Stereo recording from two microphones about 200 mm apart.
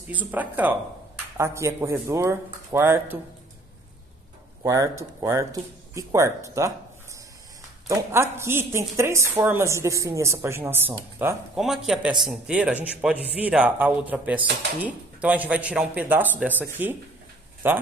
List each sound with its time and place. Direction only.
0.1 s a woman's voice: 10° right (ahead or behind)
4.6 s a woman's voice: 15° right (ahead or behind)
7.9 s a woman's voice: 15° right (ahead or behind)